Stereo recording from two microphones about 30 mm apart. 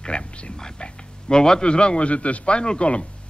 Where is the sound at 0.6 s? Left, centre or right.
Left.